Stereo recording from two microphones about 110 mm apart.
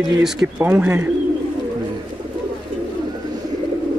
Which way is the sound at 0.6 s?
15° right (ahead or behind).